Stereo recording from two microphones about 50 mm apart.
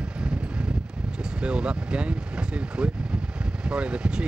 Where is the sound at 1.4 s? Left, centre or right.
Centre.